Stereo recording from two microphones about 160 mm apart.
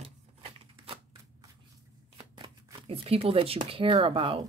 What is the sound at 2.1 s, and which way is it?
Speech, 30° right (ahead or behind).